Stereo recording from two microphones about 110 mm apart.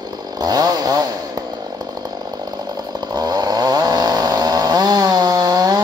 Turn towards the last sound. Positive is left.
turn(degrees=-35)  # may be behind; listen again after turning